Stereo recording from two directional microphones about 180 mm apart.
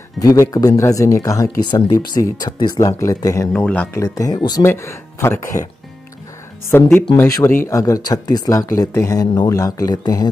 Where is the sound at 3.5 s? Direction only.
5° left (ahead or behind).